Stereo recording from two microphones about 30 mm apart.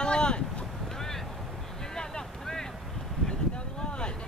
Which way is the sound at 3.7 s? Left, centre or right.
Left.